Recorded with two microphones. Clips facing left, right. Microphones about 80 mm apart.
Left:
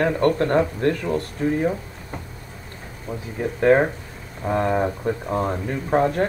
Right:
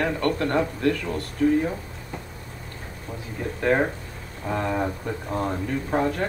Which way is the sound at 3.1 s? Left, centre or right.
Centre.